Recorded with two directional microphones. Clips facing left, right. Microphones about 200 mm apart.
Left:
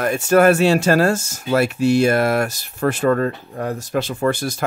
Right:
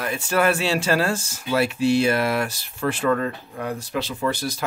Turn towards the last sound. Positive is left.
turn(degrees=50)  # may be behind; listen again after turning